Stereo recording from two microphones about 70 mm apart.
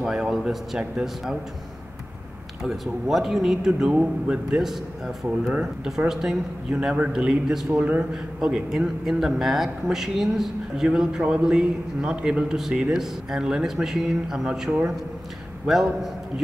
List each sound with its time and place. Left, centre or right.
0.0 s a man's voice: centre
2.6 s a man's voice: centre
4.6 s a man's voice: centre
6.7 s a man's voice: centre
7.7 s a man's voice: right
8.1 s a man's voice: centre